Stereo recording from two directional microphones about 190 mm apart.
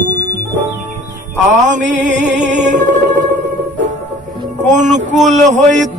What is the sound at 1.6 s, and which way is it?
Music, 40° right (ahead or behind).